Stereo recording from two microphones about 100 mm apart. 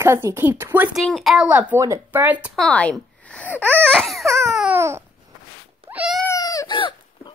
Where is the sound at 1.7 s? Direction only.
30° right (ahead or behind).